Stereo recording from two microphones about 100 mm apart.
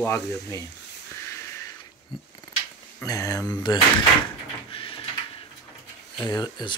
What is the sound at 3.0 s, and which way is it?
Speech, 35° left (ahead or behind).